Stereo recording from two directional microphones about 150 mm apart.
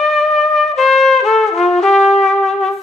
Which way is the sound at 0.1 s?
Centre (ahead or behind).